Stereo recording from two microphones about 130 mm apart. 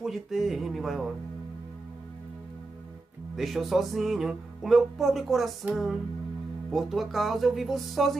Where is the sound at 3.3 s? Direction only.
Centre (ahead or behind).